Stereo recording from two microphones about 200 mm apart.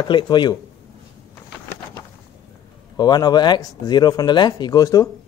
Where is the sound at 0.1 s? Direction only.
25° left (ahead or behind).